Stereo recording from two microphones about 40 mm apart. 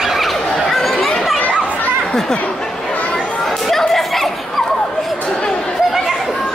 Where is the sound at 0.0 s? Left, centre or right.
Centre.